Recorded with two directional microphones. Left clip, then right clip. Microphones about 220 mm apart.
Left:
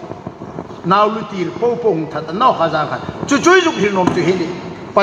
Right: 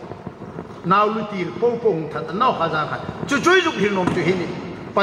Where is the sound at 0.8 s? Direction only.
40° left (ahead or behind).